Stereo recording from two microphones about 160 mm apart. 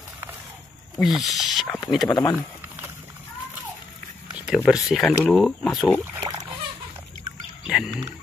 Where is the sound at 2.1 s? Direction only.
25° left (ahead or behind).